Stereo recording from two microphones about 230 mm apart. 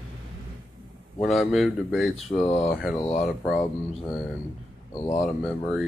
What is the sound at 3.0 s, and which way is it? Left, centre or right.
Speech, left.